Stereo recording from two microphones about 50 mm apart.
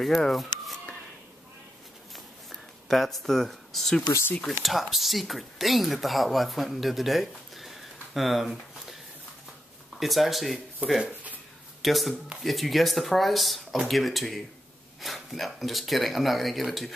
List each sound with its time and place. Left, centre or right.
0.0 s speech: centre
2.1 s a sound: centre
4.6 s speech: centre
9.9 s speech: centre
10.8 s speech: right
11.8 s speech: centre